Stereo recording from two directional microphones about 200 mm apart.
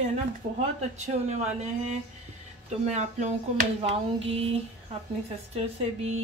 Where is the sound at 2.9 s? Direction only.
35° right (ahead or behind).